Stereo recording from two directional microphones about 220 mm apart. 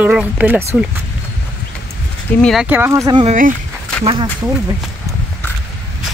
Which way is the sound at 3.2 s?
35° right (ahead or behind).